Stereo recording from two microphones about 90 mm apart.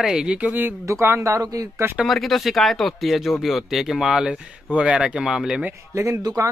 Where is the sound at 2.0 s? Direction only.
Centre (ahead or behind).